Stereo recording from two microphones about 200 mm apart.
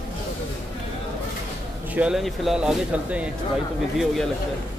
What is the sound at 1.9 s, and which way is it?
Speech, 5° right (ahead or behind).